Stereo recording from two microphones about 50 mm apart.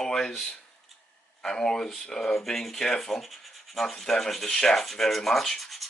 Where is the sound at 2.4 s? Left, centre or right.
Centre.